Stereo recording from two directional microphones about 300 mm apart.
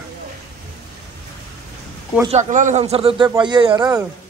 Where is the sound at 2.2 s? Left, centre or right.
Right.